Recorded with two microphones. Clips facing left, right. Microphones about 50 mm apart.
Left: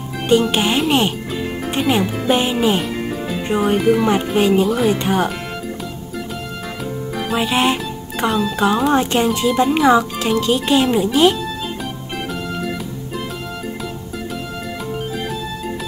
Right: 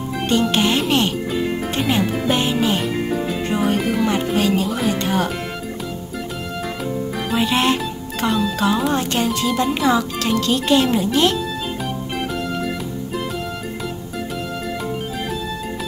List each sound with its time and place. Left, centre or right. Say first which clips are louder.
0.3 s speech: left 3 dB; centre
4.6 s speech: left 5 dB; centre
4.9 s speech: left 2 dB; centre
7.2 s speech: left 2 dB; centre